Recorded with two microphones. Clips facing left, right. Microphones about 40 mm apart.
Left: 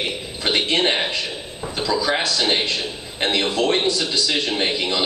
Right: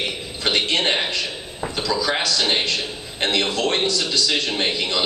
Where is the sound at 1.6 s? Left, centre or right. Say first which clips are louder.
Right 3 dB; right.